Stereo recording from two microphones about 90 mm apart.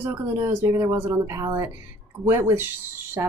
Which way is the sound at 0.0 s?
25° right (ahead or behind).